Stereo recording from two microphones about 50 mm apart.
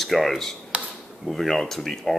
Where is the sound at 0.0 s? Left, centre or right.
Centre.